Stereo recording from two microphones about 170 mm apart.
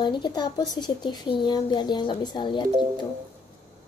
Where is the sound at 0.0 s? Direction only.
25° left (ahead or behind).